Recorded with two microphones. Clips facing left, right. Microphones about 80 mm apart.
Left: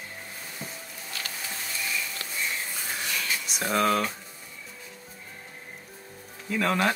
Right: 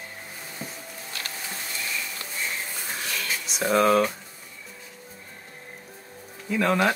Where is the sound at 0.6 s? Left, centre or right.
Centre.